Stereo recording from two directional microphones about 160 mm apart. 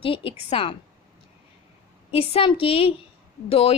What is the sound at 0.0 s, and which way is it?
Speech, 35° left (ahead or behind).